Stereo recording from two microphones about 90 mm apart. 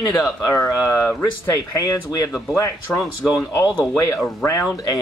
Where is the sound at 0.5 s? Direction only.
35° left (ahead or behind).